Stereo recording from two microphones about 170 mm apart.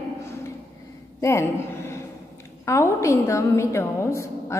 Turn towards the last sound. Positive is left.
turn(degrees=15)  # may be behind; listen again after turning